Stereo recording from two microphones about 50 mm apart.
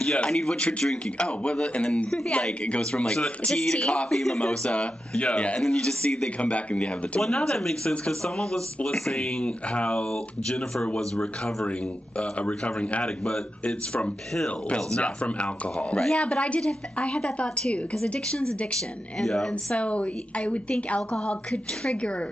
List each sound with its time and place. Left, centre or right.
0.0 s a woman's voice: centre
7.2 s a woman's voice: centre
13.0 s speech: centre
14.9 s a woman's voice: left
19.7 s a woman's voice: left